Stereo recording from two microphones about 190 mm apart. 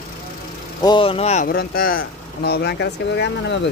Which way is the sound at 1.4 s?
50° left (ahead or behind).